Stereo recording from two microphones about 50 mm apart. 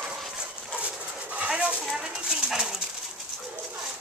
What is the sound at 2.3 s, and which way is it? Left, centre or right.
Dog, centre.